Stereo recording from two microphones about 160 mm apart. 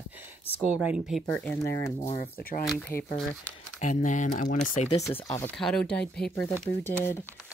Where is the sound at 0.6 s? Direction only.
5° right (ahead or behind).